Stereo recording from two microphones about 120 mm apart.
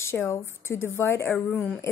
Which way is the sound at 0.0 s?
20° left (ahead or behind).